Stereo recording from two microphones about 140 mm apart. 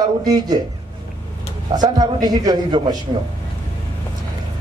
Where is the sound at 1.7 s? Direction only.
30° right (ahead or behind).